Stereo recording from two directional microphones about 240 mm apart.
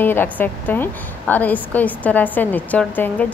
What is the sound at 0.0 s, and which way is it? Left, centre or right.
A woman's voice, centre.